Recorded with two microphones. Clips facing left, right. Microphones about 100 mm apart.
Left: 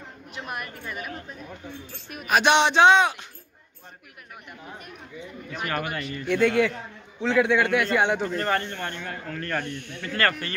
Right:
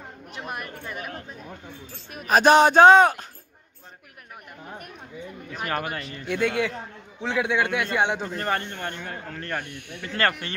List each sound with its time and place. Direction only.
0.5 s a sound: 30° right (ahead or behind)
2.0 s speech: 35° right (ahead or behind)
5.6 s speech: 30° right (ahead or behind)
6.2 s speech: 10° right (ahead or behind)
9.6 s speech: 10° right (ahead or behind)
10.0 s speech: 25° right (ahead or behind)